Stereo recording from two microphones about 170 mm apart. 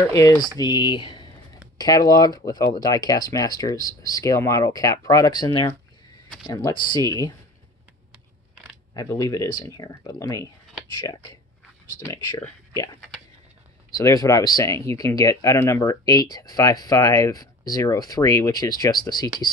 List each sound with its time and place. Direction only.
0.1 s speech: 20° left (ahead or behind)
0.6 s a sound: 25° left (ahead or behind)
1.8 s speech: 20° left (ahead or behind)
8.9 s speech: 20° left (ahead or behind)
13.9 s speech: 20° left (ahead or behind)